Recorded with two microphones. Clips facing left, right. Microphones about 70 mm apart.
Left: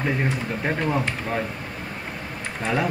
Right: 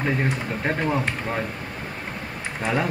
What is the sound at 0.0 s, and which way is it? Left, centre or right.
Speech, centre.